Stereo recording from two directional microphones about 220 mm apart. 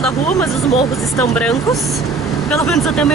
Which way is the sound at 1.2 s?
5° left (ahead or behind).